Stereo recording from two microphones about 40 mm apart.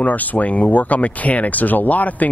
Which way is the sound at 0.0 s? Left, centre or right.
Left.